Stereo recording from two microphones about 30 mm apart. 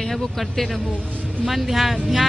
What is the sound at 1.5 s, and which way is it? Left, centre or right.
Speech, centre.